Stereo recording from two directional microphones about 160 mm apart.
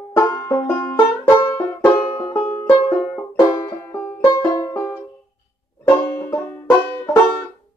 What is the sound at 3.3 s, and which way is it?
Banjo, 25° left (ahead or behind).